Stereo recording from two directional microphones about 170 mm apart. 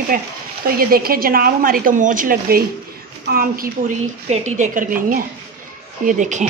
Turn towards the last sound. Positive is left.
turn(degrees=-45)  # may be behind; listen again after turning